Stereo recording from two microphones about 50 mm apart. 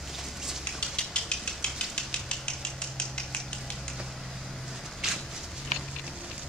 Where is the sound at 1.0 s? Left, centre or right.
Left.